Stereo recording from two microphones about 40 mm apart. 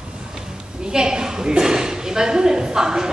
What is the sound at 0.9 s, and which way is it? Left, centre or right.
A woman's voice, centre.